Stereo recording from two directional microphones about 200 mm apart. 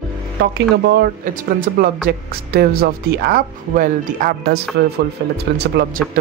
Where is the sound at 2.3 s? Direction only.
50° right (ahead or behind).